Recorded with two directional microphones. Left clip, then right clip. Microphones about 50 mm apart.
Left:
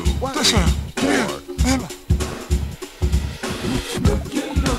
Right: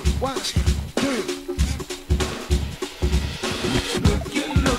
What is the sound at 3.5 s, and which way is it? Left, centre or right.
Music, centre.